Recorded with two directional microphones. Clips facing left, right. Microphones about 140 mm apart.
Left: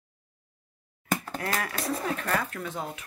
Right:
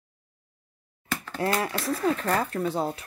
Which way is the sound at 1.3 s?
30° right (ahead or behind).